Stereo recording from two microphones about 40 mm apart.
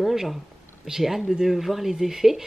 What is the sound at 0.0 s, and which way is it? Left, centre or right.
Speech, centre.